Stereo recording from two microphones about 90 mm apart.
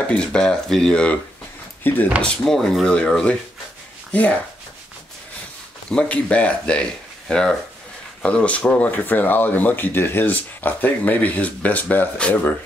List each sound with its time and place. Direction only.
0.1 s speech: 10° left (ahead or behind)
1.8 s speech: 20° left (ahead or behind)
2.4 s speech: 5° left (ahead or behind)
5.9 s speech: 15° left (ahead or behind)